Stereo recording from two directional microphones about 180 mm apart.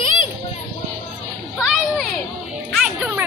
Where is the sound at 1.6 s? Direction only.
Centre (ahead or behind).